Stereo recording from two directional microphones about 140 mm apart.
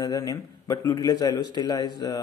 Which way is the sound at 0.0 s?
25° left (ahead or behind).